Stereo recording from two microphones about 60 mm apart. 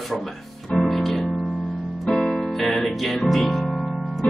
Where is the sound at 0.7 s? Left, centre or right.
Centre.